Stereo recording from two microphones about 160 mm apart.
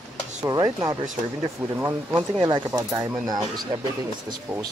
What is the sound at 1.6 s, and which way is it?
Speech, 5° right (ahead or behind).